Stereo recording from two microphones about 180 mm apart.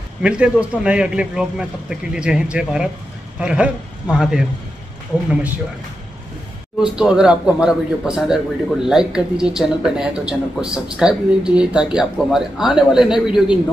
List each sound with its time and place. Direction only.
0.2 s speech: 5° right (ahead or behind)
6.8 s speech: 5° right (ahead or behind)